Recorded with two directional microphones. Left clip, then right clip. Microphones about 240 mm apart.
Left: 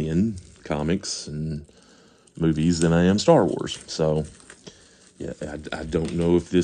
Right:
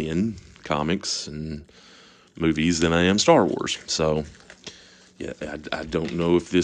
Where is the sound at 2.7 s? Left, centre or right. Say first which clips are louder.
Right 1 dB; left.